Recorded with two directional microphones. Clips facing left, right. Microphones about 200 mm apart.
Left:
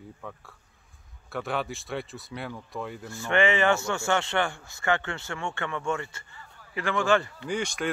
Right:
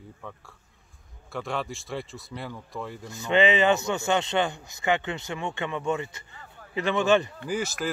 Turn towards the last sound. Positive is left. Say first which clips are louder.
# right 1 dB
turn(degrees=-5)  # may be behind; listen again after turning